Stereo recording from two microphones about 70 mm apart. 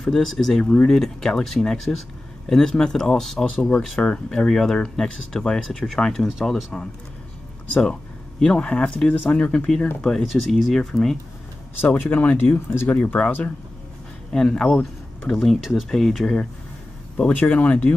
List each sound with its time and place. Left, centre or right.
0.0 s speech: centre
10.0 s speech: centre
12.0 s speech: left
12.9 s speech: centre
14.3 s speech: centre
17.3 s speech: left